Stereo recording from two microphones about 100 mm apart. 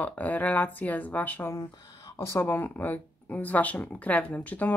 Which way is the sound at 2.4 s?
20° left (ahead or behind).